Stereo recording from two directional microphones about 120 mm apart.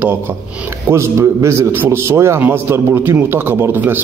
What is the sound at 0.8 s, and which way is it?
A man's voice, 20° right (ahead or behind).